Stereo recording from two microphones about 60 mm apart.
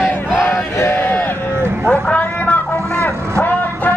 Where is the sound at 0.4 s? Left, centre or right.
Left.